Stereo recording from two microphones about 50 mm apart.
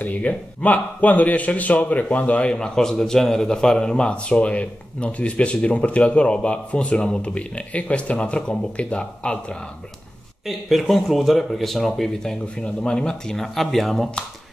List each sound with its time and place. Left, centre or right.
0.0 s speech: left
2.4 s a man's voice: centre
10.4 s speech: centre
13.4 s speech: centre